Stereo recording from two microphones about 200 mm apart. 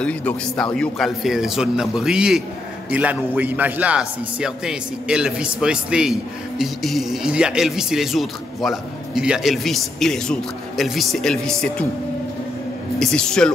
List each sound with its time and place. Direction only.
0.0 s speech: 5° left (ahead or behind)
13.0 s speech: 5° left (ahead or behind)